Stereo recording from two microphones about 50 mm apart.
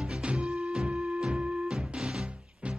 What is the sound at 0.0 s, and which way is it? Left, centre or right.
Music, right.